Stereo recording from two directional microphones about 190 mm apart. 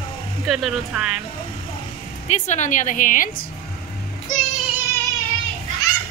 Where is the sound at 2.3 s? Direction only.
40° left (ahead or behind).